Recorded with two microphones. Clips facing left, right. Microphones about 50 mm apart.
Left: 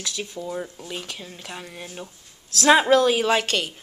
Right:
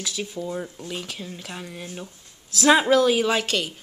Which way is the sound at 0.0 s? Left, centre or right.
Centre.